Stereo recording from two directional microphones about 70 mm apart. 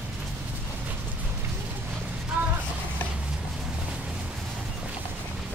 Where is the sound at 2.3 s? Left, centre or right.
Right.